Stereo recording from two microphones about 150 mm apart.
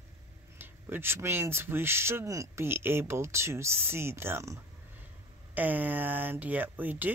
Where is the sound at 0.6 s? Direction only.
15° right (ahead or behind).